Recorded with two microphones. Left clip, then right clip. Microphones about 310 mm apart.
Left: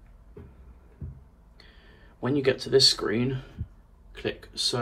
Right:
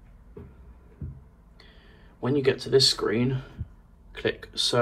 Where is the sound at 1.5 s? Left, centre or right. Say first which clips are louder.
Even; centre.